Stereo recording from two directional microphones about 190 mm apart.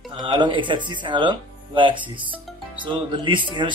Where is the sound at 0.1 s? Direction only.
25° right (ahead or behind).